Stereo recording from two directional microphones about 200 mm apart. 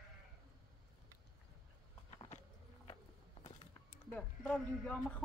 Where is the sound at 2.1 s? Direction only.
25° left (ahead or behind).